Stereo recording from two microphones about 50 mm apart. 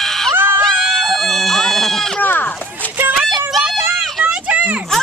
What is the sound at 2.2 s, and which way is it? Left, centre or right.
Speech, left.